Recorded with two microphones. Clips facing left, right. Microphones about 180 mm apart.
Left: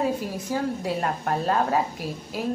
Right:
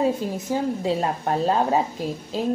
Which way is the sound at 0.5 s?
20° right (ahead or behind).